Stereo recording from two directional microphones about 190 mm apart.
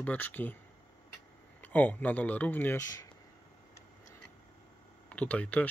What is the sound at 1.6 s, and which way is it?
Speech, 10° left (ahead or behind).